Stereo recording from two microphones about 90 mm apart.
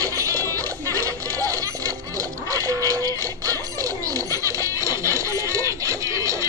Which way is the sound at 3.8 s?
40° right (ahead or behind).